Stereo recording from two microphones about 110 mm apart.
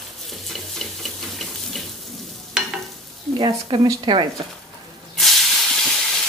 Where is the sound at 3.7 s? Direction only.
45° right (ahead or behind).